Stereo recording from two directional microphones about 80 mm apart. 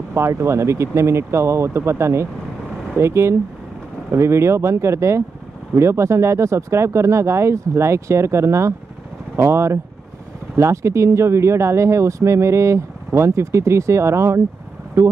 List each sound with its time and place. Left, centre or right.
0.1 s speech: right